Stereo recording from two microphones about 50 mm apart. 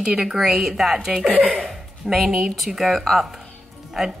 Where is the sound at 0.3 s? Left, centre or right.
Centre.